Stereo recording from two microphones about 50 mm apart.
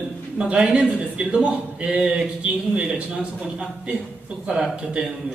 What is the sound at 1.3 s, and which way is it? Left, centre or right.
A man's voice, right.